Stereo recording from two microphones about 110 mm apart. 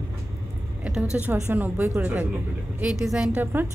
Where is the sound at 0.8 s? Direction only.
10° right (ahead or behind).